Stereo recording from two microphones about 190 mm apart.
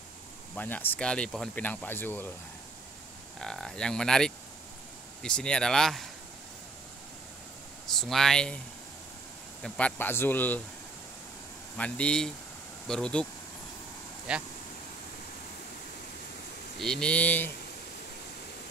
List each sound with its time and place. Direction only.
0.6 s speech: 10° left (ahead or behind)
3.3 s cattle: centre (ahead or behind)
7.8 s speech: centre (ahead or behind)
9.6 s speech: 5° left (ahead or behind)
11.7 s speech: 5° left (ahead or behind)
12.8 s cattle: 5° left (ahead or behind)
16.7 s cattle: centre (ahead or behind)